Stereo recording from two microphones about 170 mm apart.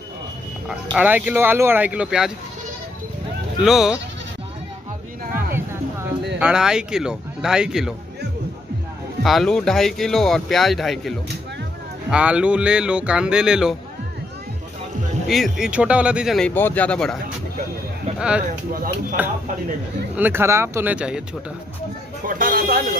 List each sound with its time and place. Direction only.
0.7 s speech: 5° right (ahead or behind)
3.6 s speech: centre (ahead or behind)
6.4 s speech: 5° right (ahead or behind)
9.2 s speech: centre (ahead or behind)
15.2 s speech: centre (ahead or behind)
18.4 s speech: 55° right (ahead or behind)
19.2 s speech: 10° right (ahead or behind)
22.2 s speech: 55° right (ahead or behind)